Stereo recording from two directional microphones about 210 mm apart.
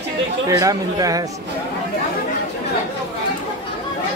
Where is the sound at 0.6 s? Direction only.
15° right (ahead or behind).